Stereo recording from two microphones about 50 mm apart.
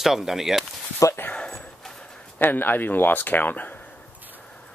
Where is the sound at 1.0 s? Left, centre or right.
Left.